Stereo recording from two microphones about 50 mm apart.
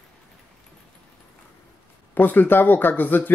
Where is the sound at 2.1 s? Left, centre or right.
Left.